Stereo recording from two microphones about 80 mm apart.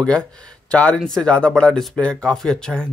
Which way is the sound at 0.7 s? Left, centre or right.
Centre.